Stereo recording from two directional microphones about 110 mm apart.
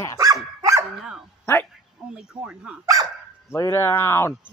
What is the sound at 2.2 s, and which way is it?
Speech, 5° right (ahead or behind).